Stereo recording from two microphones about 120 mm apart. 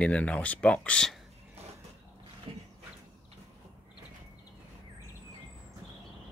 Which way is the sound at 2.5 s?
50° right (ahead or behind).